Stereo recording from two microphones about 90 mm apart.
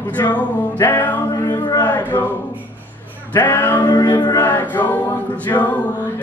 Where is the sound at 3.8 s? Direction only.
55° left (ahead or behind).